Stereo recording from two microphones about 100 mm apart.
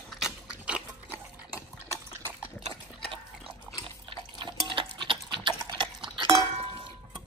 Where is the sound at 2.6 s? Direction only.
60° right (ahead or behind).